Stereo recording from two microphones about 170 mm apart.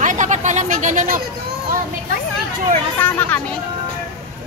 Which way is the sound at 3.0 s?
10° left (ahead or behind).